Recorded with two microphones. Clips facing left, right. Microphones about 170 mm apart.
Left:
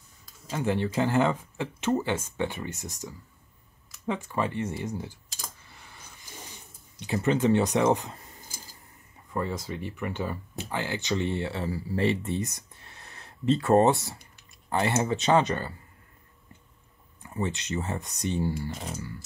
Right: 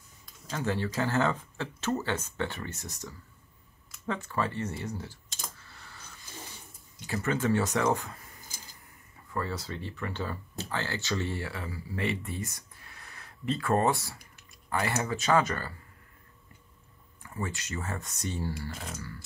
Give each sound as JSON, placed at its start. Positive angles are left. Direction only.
{"t": 0.5, "sound": "speech", "side_deg": 20}
{"t": 5.6, "sound": "a sound", "side_deg": 15}
{"t": 7.0, "sound": "speech", "side_deg": 20}
{"t": 17.2, "sound": "speech", "side_deg": 20}